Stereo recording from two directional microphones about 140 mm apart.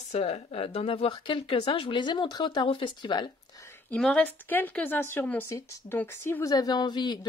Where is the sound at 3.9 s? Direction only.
5° left (ahead or behind).